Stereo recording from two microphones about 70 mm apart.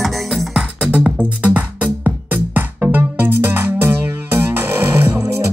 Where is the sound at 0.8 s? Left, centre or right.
Centre.